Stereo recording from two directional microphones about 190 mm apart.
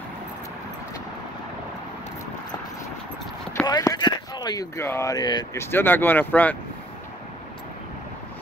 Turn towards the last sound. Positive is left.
turn(degrees=10)  # may be behind; listen again after turning